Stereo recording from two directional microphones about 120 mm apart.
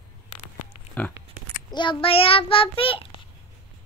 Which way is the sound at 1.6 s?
40° left (ahead or behind).